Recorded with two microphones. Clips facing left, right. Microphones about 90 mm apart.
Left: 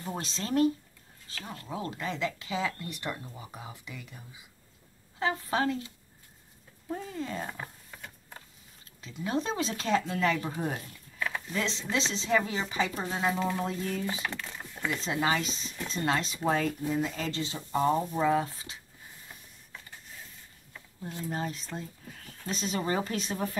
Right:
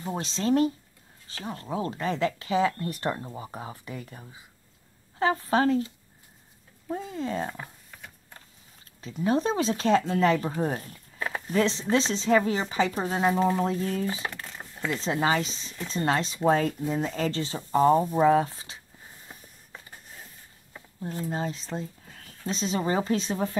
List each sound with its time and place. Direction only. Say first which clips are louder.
0.0 s speech: right 7 dB; 30° right (ahead or behind)
5.2 s speech: right 5 dB; 35° right (ahead or behind)
9.0 s speech: right 6 dB; 35° right (ahead or behind)
19.2 s a sound: right 2 dB; 35° right (ahead or behind)
21.3 s speech: right 2 dB; 25° right (ahead or behind)